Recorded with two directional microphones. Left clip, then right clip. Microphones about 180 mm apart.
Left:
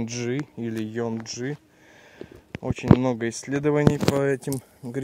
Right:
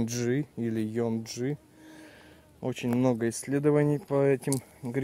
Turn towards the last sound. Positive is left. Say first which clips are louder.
# left 1 dB
turn(degrees=5)  # may be behind; listen again after turning